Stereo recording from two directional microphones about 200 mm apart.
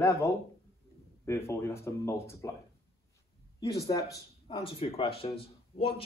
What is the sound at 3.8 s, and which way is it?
Speech, 15° left (ahead or behind).